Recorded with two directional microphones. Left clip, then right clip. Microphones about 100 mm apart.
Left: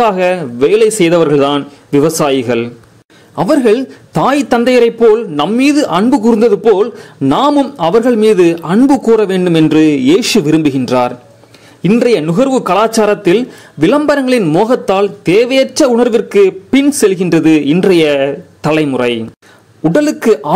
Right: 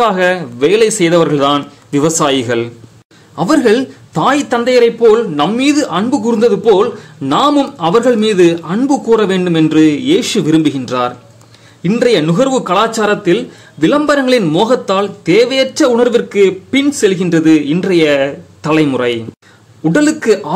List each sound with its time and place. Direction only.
0.0 s a man's voice: 30° left (ahead or behind)